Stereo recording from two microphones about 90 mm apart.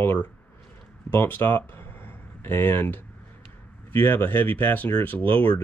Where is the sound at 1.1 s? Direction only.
25° left (ahead or behind).